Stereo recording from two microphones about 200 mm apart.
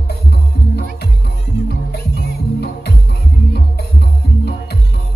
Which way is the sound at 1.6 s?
55° left (ahead or behind).